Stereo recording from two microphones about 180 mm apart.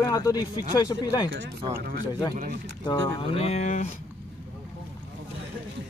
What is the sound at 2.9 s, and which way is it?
Speech, 25° left (ahead or behind).